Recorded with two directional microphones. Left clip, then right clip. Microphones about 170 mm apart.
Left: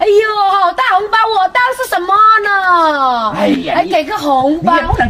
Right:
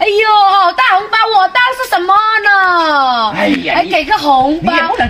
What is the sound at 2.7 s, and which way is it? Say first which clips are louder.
A woman's voice: even; 5° left (ahead or behind).